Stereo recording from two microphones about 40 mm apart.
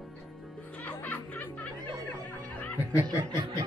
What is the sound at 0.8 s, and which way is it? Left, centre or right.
Music, left.